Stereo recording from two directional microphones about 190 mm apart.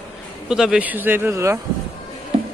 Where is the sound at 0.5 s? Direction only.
5° right (ahead or behind).